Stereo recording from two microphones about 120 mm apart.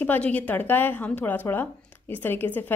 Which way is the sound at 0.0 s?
15° left (ahead or behind).